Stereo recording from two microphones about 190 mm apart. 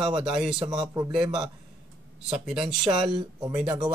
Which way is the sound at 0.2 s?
5° right (ahead or behind).